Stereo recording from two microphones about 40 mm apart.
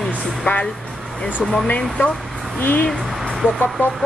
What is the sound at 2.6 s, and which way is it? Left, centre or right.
Speech, left.